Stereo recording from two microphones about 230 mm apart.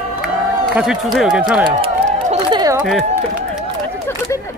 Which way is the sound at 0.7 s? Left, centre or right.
Centre.